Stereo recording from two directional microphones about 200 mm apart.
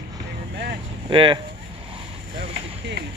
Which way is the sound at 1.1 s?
25° right (ahead or behind).